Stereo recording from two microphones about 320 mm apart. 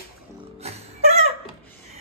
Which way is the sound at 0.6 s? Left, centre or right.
Centre.